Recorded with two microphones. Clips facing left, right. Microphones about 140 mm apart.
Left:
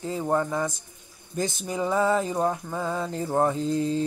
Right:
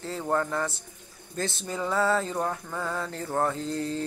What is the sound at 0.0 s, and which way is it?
Speech, 15° left (ahead or behind).